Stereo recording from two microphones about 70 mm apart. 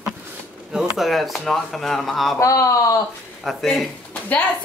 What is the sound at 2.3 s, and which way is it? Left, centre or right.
Speech, left.